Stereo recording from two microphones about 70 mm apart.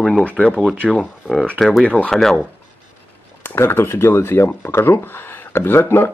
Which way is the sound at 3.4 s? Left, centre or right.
Left.